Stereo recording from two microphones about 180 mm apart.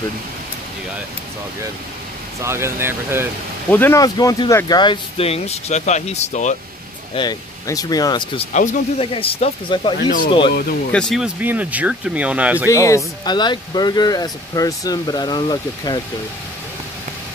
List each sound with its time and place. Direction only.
2.4 s speech: 15° right (ahead or behind)
3.7 s speech: 15° left (ahead or behind); by 6.5 s 40° left (ahead or behind)
7.2 s speech: 20° left (ahead or behind)
9.9 s speech: 50° left (ahead or behind)
10.9 s speech: 5° left (ahead or behind)
12.6 s speech: 15° left (ahead or behind)